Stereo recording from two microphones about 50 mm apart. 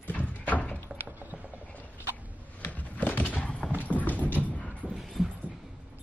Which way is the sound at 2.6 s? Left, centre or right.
Left.